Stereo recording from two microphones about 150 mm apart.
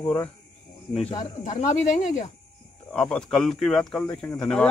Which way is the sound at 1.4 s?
55° left (ahead or behind).